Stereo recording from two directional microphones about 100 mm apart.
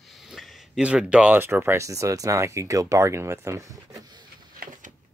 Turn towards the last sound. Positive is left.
turn(degrees=-30)  # may be behind; listen again after turning